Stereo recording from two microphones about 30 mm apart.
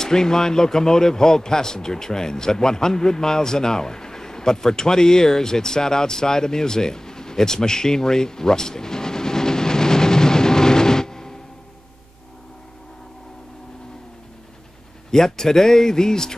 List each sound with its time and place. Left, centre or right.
0.0 s speech: centre
15.1 s speech: centre